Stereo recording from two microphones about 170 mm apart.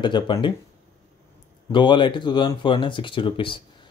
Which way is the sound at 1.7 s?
30° left (ahead or behind).